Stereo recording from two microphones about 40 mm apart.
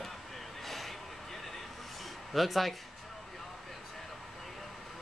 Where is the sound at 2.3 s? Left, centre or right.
Centre.